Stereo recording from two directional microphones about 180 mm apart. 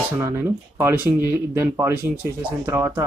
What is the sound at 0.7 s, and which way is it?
Speech, 15° right (ahead or behind).